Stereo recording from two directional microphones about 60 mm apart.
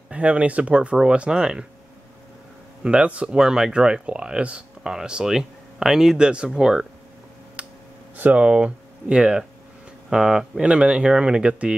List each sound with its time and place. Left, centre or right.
0.1 s speech: right
2.8 s speech: centre
3.3 s speech: centre
7.6 s a sound: right
8.2 s speech: right